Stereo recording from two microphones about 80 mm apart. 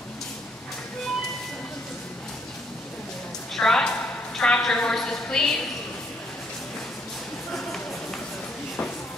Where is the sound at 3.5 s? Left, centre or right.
Centre.